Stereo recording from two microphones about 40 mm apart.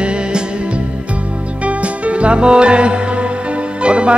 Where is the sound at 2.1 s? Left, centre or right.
Right.